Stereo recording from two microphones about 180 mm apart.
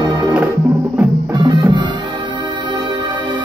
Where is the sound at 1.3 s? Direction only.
25° right (ahead or behind).